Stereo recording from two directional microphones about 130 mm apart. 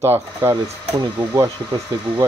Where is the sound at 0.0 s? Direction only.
15° right (ahead or behind).